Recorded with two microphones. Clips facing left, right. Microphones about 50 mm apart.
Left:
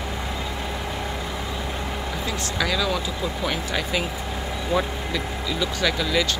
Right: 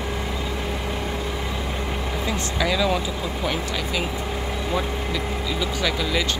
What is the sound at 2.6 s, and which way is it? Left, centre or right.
Speech, centre.